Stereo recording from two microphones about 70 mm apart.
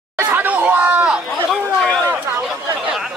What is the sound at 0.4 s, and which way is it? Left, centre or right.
Chatter, right.